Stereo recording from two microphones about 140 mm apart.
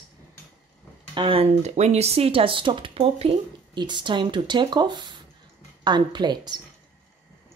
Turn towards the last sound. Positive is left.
turn(degrees=-30)  # may be behind; listen again after turning